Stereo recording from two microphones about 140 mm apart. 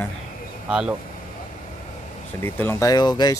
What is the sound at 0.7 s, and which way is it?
Speech, 5° right (ahead or behind).